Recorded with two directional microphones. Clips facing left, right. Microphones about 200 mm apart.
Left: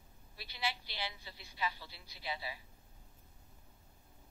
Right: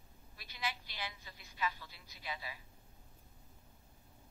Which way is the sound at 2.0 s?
30° left (ahead or behind).